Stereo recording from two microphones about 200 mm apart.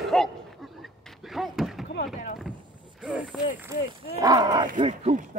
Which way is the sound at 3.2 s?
5° right (ahead or behind).